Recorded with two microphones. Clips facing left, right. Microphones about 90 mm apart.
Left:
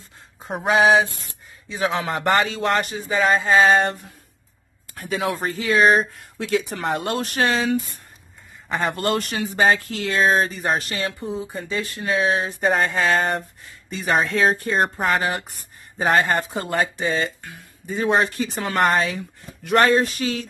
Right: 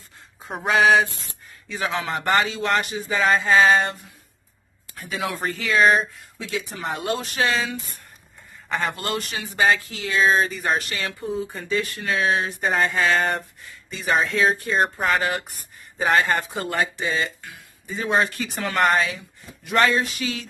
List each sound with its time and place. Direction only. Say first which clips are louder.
0.7 s a sound: left 1 dB; 25° left (ahead or behind)
1.7 s speech: left 3 dB; 30° left (ahead or behind)
4.9 s speech: left 4 dB; 40° left (ahead or behind)
6.1 s speech: left 7 dB; 60° left (ahead or behind)
7.4 s speech: left 4 dB; 35° left (ahead or behind)
9.8 s speech: left 5 dB; 55° left (ahead or behind)
10.1 s speech: even; 40° left (ahead or behind)
19.6 s speech: left 3 dB; 50° left (ahead or behind)